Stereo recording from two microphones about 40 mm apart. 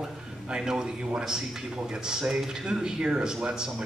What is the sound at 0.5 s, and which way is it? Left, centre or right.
A man's voice, centre.